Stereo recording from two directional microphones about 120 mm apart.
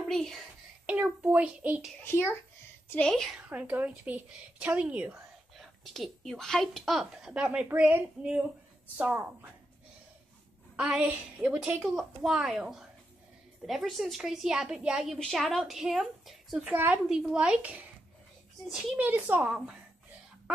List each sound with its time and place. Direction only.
0.1 s a child's voice: 5° left (ahead or behind)
0.8 s a child's voice: 10° right (ahead or behind)
2.0 s a child's voice: 20° left (ahead or behind)
2.9 s a woman's voice: 5° left (ahead or behind)
3.3 s a woman's voice: 10° right (ahead or behind)
5.6 s a woman's voice: centre (ahead or behind); by 9.5 s 15° right (ahead or behind)
10.8 s a woman's voice: 5° right (ahead or behind)
19.0 s a woman's voice: 15° right (ahead or behind)